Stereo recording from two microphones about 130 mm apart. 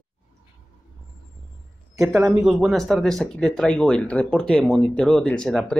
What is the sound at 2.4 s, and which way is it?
Speech, centre (ahead or behind).